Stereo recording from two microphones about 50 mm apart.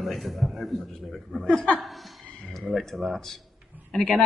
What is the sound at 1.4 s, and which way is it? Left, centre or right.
Speech, left.